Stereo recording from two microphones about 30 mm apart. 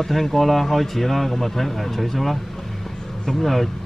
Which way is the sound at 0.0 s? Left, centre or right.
Centre.